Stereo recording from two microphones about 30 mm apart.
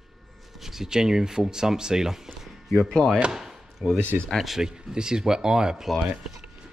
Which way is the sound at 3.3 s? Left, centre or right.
Centre.